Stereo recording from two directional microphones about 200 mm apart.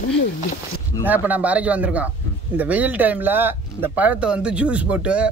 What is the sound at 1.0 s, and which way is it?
Speech, 10° right (ahead or behind).